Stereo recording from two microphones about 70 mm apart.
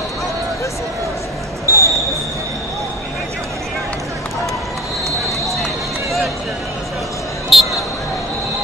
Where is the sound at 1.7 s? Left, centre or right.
Right.